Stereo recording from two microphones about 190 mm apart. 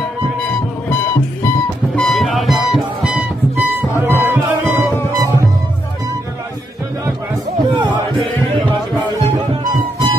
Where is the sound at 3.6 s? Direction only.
10° right (ahead or behind).